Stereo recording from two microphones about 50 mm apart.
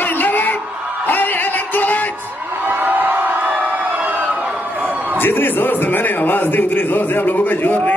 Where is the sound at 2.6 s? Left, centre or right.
Right.